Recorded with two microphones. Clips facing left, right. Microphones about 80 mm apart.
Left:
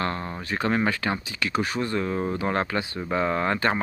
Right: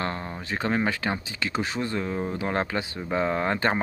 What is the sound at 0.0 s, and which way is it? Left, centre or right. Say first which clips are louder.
Speech: left 2 dB; centre.